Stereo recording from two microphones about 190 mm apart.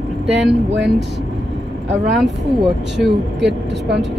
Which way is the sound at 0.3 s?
65° right (ahead or behind).